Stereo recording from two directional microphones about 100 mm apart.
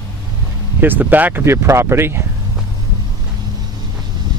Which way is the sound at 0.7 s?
20° right (ahead or behind).